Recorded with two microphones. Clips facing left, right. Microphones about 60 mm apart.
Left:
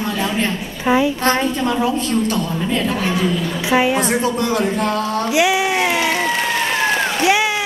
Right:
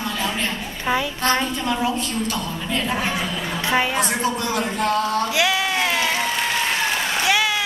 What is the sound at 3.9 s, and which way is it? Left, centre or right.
A woman's voice, left.